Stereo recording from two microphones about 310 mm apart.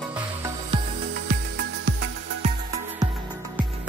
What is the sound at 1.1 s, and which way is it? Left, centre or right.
Music, right.